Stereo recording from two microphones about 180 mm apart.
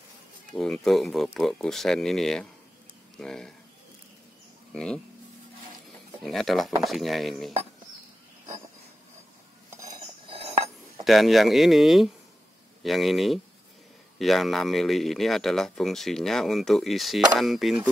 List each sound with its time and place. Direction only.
0.6 s speech: centre (ahead or behind)
4.7 s speech: 5° left (ahead or behind)
6.2 s speech: centre (ahead or behind)
9.7 s cutlery: 20° right (ahead or behind)
10.2 s chink: 30° right (ahead or behind)
11.1 s speech: centre (ahead or behind)